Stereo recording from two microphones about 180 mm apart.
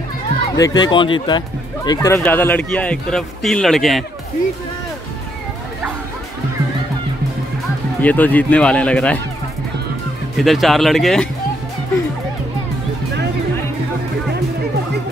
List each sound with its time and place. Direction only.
0.6 s speech: 20° left (ahead or behind)
1.9 s speech: 15° left (ahead or behind)
8.0 s speech: 10° left (ahead or behind)
10.3 s speech: centre (ahead or behind)